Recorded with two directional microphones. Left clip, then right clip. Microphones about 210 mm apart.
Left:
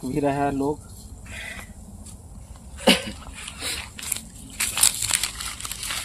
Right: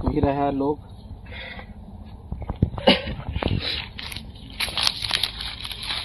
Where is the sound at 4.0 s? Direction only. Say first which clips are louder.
Even; 40° left (ahead or behind).